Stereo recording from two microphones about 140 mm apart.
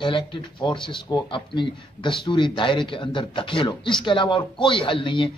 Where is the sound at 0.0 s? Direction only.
35° left (ahead or behind).